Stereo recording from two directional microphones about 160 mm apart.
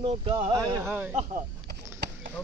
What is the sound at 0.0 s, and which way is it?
Speech, 30° right (ahead or behind).